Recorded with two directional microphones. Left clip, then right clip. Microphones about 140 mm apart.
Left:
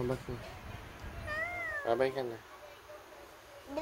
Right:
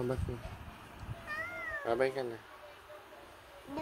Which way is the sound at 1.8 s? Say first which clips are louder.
Left 1 dB; centre (ahead or behind).